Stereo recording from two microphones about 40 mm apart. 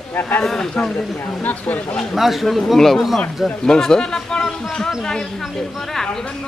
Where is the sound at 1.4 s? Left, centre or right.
Left.